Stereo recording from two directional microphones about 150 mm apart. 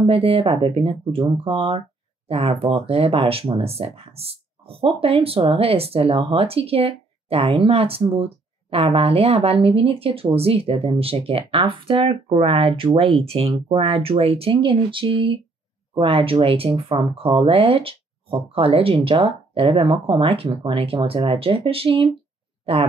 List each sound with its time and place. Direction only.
0.0 s speech: 40° right (ahead or behind)